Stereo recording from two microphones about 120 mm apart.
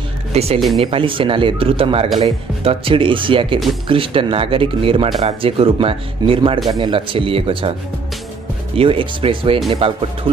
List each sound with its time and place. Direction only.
0.3 s speech: 60° right (ahead or behind)
0.8 s speech: 45° right (ahead or behind)
8.7 s speech: 45° right (ahead or behind)